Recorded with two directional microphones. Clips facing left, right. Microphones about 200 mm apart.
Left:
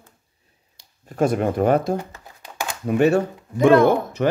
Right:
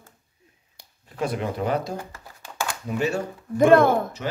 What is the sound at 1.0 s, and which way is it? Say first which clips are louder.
Speech: left 7 dB; 45° left (ahead or behind).